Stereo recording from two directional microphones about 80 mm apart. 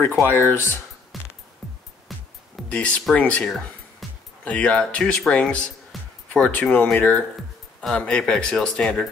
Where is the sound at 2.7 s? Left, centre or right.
Centre.